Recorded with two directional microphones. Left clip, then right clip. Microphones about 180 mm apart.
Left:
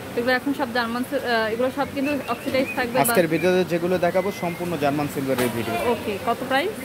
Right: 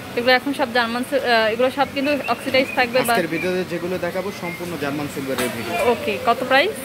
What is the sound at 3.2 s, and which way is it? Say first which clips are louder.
Speech: left 2 dB; 60° left (ahead or behind).